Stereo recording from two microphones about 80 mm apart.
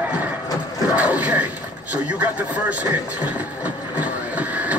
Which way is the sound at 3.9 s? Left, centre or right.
Centre.